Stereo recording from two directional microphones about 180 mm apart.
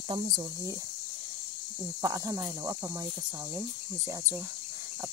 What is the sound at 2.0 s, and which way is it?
Speech, 20° right (ahead or behind).